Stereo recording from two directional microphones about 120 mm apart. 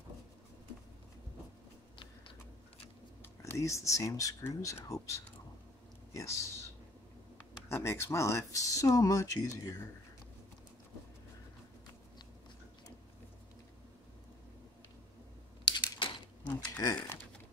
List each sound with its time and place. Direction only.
3.4 s speech: 25° left (ahead or behind)
7.7 s speech: 20° left (ahead or behind)
15.6 s a sound: 35° left (ahead or behind)